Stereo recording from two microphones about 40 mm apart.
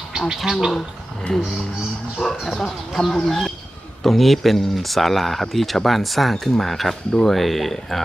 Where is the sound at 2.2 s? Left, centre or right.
Centre.